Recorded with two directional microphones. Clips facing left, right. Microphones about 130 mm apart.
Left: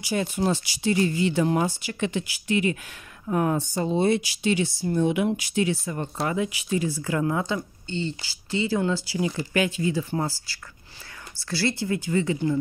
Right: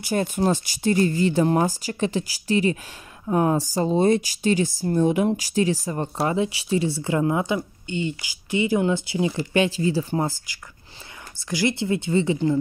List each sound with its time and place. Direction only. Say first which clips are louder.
0.0 s speech: right 3 dB; 50° right (ahead or behind); by 3.6 s 25° right (ahead or behind)
3.7 s speech: right 3 dB; 40° right (ahead or behind)
10.2 s speech: right 3 dB; 15° right (ahead or behind)